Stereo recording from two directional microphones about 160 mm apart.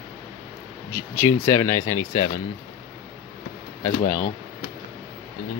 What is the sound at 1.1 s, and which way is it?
Speech, 20° left (ahead or behind).